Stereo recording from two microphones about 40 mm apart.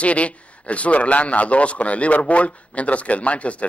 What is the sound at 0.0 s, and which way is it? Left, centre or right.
A man's voice, left.